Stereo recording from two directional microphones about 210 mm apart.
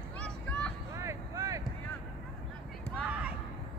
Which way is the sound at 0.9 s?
15° right (ahead or behind).